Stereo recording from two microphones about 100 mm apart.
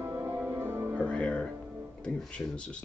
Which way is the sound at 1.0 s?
10° left (ahead or behind).